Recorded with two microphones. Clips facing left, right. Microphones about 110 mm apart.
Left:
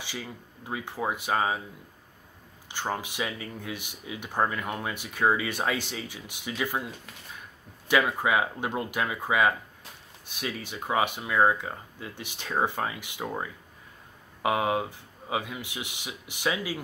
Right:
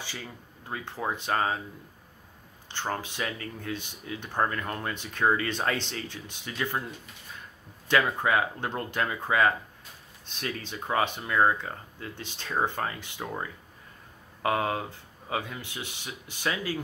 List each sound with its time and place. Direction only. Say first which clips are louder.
0.7 s speech: left 2 dB; 15° left (ahead or behind)
2.7 s speech: left 1 dB; 10° left (ahead or behind)
7.9 s speech: even; 10° left (ahead or behind)